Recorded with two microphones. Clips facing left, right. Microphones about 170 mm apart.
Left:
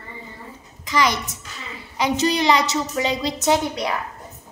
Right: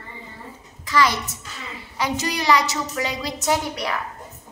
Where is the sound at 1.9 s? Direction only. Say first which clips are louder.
Left 5 dB; 20° left (ahead or behind).